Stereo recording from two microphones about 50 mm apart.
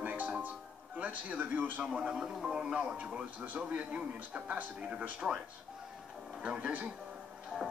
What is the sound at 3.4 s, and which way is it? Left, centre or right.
A man's voice, right.